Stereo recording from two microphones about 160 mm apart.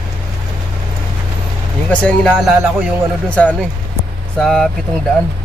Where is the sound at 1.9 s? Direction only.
10° left (ahead or behind).